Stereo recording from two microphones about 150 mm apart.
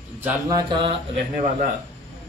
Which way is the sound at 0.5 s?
30° right (ahead or behind).